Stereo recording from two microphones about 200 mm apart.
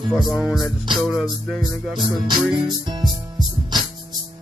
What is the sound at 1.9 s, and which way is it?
Music, 20° right (ahead or behind).